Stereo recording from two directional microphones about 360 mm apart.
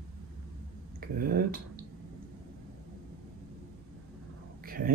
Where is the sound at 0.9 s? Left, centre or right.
Right.